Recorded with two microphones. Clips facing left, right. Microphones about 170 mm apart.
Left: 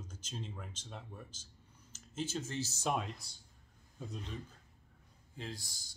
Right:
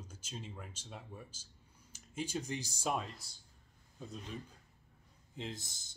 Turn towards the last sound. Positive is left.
turn(degrees=-20)  # may be behind; listen again after turning